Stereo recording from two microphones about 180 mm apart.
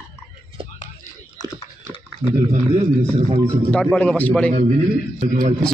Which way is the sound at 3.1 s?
35° right (ahead or behind).